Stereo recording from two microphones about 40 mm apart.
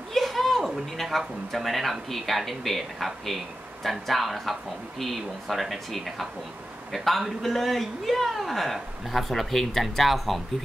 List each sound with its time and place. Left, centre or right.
0.1 s a man's voice: centre